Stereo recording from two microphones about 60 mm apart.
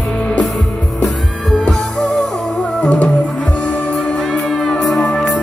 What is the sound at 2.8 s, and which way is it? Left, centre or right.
Music, left.